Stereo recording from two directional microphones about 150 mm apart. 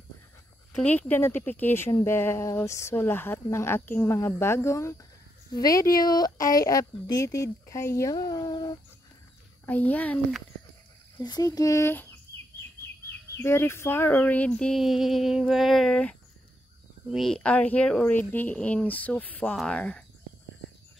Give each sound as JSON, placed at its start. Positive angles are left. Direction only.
{"t": 0.7, "sound": "speech", "side_deg": 10}
{"t": 9.7, "sound": "speech", "side_deg": 10}
{"t": 11.1, "sound": "speech", "side_deg": 25}
{"t": 13.4, "sound": "speech", "side_deg": 15}